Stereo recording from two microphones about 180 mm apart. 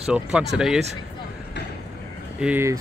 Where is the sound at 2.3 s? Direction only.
10° right (ahead or behind).